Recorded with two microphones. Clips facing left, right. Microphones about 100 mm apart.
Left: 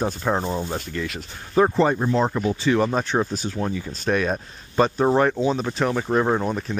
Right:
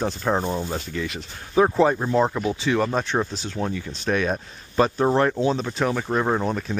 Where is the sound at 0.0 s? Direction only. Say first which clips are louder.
Even; 5° left (ahead or behind).